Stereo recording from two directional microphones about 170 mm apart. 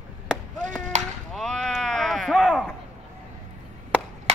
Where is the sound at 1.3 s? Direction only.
Centre (ahead or behind).